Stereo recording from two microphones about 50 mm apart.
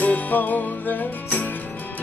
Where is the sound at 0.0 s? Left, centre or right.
Left.